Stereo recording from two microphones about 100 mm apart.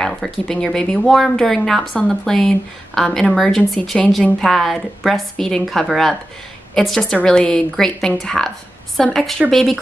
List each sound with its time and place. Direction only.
0.0 s speech: 5° left (ahead or behind)